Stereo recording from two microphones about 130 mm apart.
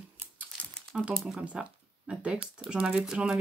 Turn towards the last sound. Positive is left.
turn(degrees=-5)  # may be behind; listen again after turning